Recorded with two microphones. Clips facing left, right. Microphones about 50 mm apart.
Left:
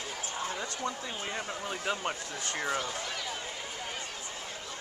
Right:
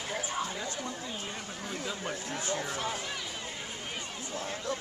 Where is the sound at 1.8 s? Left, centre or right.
Left.